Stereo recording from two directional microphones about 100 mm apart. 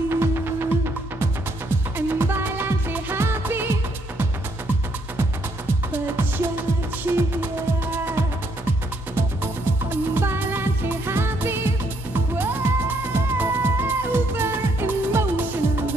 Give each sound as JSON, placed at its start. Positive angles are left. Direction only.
{"t": 0.1, "sound": "music", "side_deg": -25}
{"t": 5.9, "sound": "music", "side_deg": -20}